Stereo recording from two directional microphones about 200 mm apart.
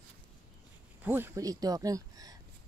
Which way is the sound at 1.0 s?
10° right (ahead or behind).